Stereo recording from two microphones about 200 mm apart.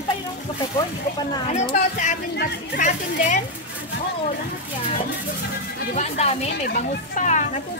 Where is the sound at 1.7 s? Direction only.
40° left (ahead or behind).